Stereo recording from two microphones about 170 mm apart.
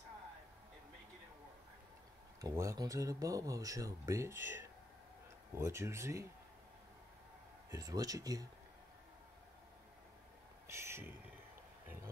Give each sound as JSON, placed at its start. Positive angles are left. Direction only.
{"t": 2.4, "sound": "speech", "side_deg": -20}
{"t": 7.7, "sound": "speech", "side_deg": -20}
{"t": 10.7, "sound": "a sound", "side_deg": -15}